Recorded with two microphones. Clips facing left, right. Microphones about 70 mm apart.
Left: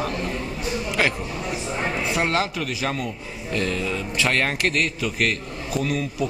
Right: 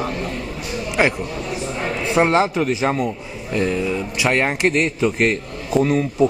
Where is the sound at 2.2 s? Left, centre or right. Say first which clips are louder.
Right 10 dB; right.